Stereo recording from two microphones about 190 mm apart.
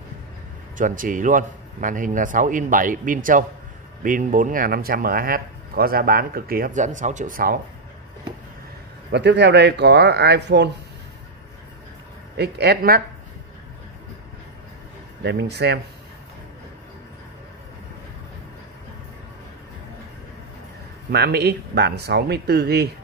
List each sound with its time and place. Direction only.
0.7 s speech: 45° right (ahead or behind)
9.1 s speech: 65° right (ahead or behind)
12.4 s speech: 60° right (ahead or behind)
15.2 s speech: 60° right (ahead or behind)
21.1 s speech: 60° right (ahead or behind)